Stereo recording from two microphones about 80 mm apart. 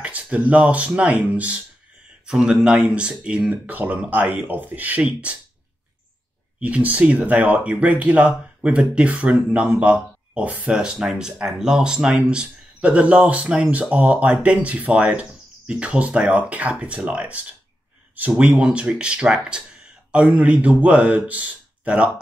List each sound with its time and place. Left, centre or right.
0.0 s speech: centre
6.6 s speech: centre
18.4 s speech: centre